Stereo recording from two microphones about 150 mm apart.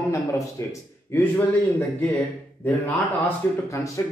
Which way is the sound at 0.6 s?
20° left (ahead or behind).